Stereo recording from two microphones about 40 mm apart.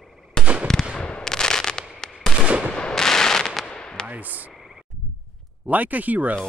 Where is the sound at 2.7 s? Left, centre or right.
Centre.